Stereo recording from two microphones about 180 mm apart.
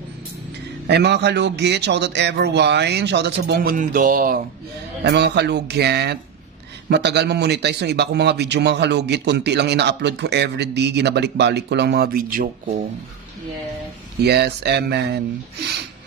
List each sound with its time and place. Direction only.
0.8 s a man's voice: 70° right (ahead or behind); by 4.4 s 50° right (ahead or behind)
5.0 s a man's voice: 70° right (ahead or behind); by 12.8 s 50° right (ahead or behind)
14.2 s a man's voice: 65° right (ahead or behind)